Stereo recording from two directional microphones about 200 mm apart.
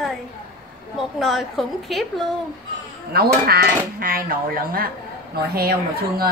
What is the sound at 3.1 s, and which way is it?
Speech, 50° right (ahead or behind).